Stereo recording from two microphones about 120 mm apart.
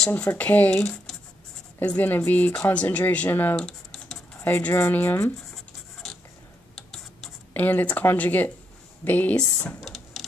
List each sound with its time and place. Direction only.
0.1 s speech: 15° left (ahead or behind)
6.7 s a sound: 5° left (ahead or behind)
9.0 s speech: 15° left (ahead or behind)
9.8 s printer: centre (ahead or behind)